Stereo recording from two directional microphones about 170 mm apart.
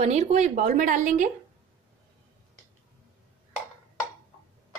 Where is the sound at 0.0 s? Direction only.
40° right (ahead or behind).